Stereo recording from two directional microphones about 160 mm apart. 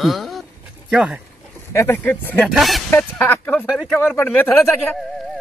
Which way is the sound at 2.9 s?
10° left (ahead or behind).